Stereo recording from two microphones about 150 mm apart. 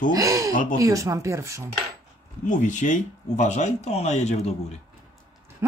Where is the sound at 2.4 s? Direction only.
55° left (ahead or behind).